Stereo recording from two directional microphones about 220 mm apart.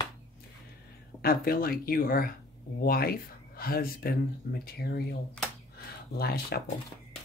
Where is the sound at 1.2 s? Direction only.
40° left (ahead or behind).